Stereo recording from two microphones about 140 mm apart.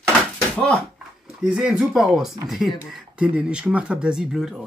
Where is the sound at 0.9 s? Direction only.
5° right (ahead or behind).